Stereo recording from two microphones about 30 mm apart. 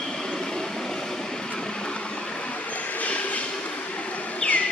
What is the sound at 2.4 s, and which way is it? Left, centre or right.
Train, left.